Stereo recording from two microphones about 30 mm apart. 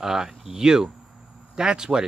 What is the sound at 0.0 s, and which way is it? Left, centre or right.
Speech, centre.